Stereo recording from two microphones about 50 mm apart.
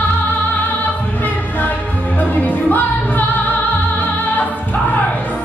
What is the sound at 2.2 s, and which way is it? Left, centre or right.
Music, left.